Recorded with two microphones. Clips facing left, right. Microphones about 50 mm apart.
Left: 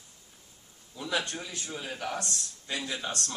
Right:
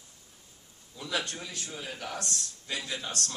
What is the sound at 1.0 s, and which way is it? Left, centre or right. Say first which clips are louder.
Speech: left 2 dB; centre.